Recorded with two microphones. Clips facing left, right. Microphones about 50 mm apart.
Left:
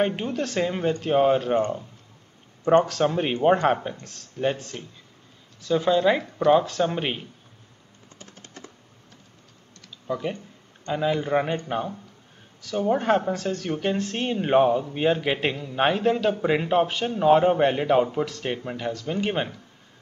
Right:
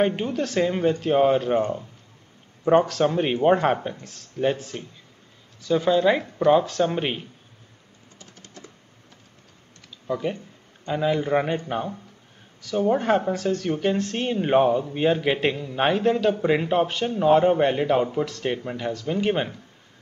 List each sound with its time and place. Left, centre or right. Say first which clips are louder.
0.0 s speech: right 2 dB; centre
8.2 s typing: left 1 dB; left
10.0 s speech: right 2 dB; centre